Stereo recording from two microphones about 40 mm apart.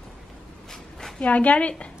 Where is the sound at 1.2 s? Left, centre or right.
Left.